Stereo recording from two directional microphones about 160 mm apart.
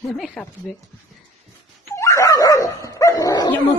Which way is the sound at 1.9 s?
20° left (ahead or behind).